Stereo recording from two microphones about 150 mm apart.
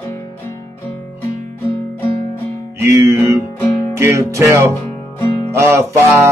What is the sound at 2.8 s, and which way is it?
Music, 20° right (ahead or behind).